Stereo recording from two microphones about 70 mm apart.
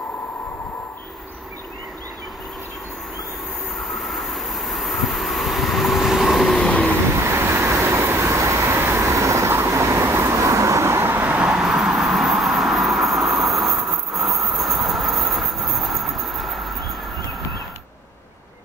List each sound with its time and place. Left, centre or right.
3.7 s vehicle: centre
7.2 s vehicle: right
9.1 s vehicle: right
11.4 s vehicle: centre